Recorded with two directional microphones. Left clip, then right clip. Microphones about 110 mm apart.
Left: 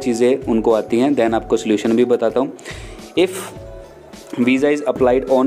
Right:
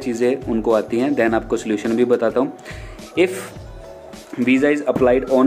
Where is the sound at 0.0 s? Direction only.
30° left (ahead or behind).